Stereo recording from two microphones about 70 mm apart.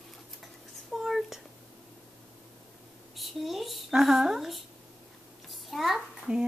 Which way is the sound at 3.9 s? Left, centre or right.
Centre.